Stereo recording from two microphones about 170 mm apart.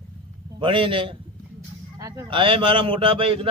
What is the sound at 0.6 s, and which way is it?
Speech, 30° right (ahead or behind).